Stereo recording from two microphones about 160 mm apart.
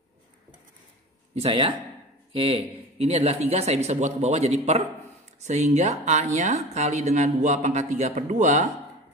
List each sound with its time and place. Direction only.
1.4 s a man's voice: 35° right (ahead or behind); by 8.6 s 50° right (ahead or behind)